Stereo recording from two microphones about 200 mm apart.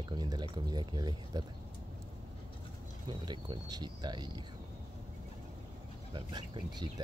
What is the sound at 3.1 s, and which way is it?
Speech, 20° right (ahead or behind).